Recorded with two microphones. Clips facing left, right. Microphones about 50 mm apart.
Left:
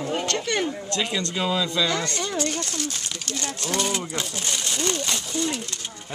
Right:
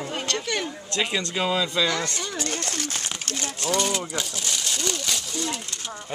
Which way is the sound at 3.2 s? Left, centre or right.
Right.